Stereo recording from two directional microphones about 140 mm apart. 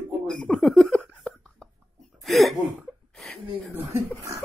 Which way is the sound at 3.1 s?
Centre (ahead or behind).